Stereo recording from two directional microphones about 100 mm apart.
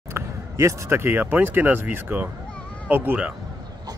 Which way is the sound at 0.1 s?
30° right (ahead or behind).